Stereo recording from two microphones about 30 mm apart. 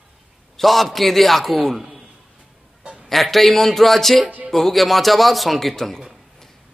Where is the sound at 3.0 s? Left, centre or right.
Centre.